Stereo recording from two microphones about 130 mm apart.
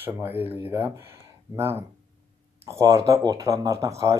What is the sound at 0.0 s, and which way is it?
Speech, 15° right (ahead or behind).